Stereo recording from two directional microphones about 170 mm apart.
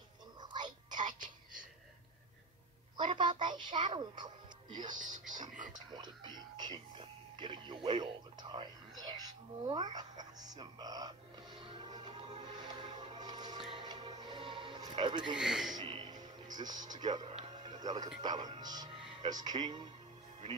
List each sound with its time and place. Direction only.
0.4 s whispering: 25° right (ahead or behind)
3.0 s music: 25° right (ahead or behind)
5.1 s speech: 25° right (ahead or behind)
13.7 s music: 30° right (ahead or behind)
15.3 s speech: centre (ahead or behind)
15.7 s music: 30° right (ahead or behind)
16.5 s speech: 25° right (ahead or behind)